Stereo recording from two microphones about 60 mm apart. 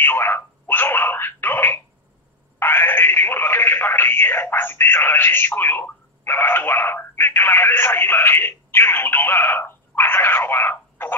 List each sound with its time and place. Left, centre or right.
0.0 s telephone: left
2.6 s a sound: left
6.2 s telephone: left